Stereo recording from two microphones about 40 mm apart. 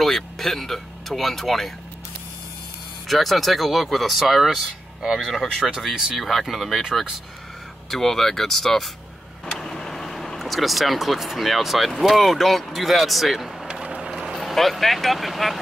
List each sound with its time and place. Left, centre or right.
0.0 s speech: centre
3.1 s speech: centre
7.9 s speech: centre
13.8 s vehicle: right
14.4 s speech: centre